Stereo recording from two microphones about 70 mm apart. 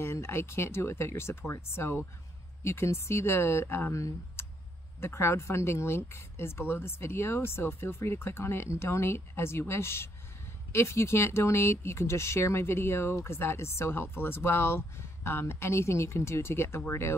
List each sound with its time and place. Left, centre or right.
0.0 s speech: left
3.9 s speech: left